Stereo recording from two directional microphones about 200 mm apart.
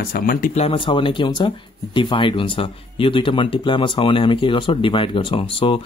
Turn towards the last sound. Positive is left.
turn(degrees=25)  # may be behind; listen again after turning